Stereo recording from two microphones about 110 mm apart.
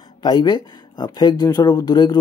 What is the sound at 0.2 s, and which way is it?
Speech, 40° left (ahead or behind).